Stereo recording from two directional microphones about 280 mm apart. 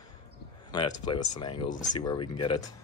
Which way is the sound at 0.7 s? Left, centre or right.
Centre.